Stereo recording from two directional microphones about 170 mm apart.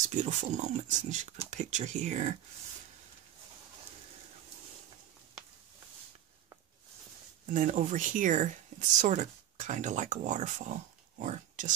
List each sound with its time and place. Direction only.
0.1 s speech: 45° right (ahead or behind)
7.4 s speech: 50° right (ahead or behind)